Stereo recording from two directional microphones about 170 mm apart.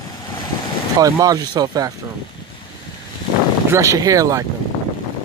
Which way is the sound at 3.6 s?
15° right (ahead or behind).